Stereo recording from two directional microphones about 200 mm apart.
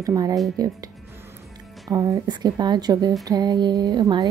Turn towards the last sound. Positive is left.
turn(degrees=-20)  # may be behind; listen again after turning